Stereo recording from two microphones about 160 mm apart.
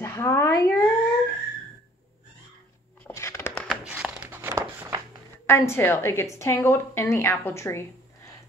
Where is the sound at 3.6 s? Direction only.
5° right (ahead or behind).